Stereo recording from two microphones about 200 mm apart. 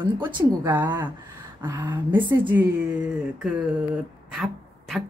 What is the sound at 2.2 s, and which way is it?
Speech, 25° right (ahead or behind).